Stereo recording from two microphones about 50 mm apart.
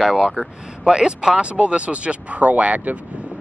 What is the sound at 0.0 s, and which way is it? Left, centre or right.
Speech, centre.